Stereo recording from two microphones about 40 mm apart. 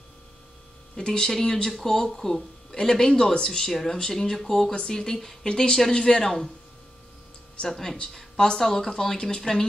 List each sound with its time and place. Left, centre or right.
0.9 s speech: centre
7.6 s speech: centre